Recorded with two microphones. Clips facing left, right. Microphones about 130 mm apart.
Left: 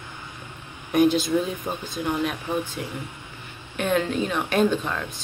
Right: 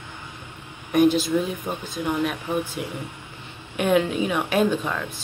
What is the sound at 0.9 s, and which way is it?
Speech, centre (ahead or behind).